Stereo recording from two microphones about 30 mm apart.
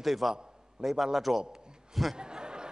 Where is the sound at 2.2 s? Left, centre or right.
Right.